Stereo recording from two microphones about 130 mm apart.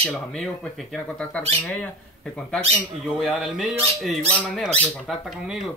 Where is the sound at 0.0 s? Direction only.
10° left (ahead or behind).